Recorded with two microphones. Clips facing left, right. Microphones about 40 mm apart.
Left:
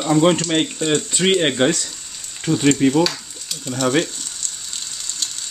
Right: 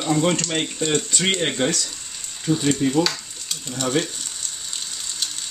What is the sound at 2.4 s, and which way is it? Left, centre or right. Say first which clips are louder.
Speech: left 4 dB; left.